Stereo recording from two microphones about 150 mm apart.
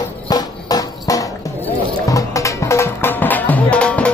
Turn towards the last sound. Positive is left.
turn(degrees=10)  # may be behind; listen again after turning